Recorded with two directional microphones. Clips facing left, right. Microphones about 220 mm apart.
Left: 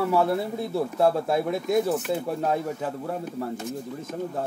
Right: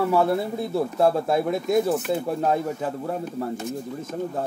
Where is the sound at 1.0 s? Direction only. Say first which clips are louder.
Right 1 dB; 45° right (ahead or behind).